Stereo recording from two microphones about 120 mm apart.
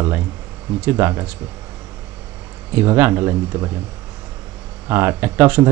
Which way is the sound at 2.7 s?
20° right (ahead or behind).